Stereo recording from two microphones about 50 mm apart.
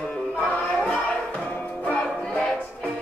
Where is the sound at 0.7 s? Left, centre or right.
Left.